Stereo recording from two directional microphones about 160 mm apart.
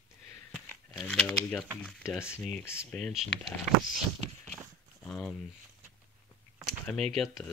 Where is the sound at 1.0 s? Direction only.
5° left (ahead or behind).